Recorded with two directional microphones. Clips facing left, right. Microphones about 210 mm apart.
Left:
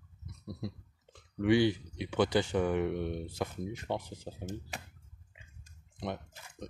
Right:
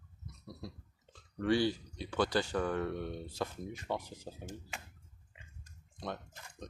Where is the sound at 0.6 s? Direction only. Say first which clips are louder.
Left 6 dB; 15° left (ahead or behind).